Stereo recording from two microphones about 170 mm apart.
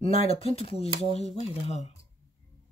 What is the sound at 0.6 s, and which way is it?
Speech, 35° left (ahead or behind).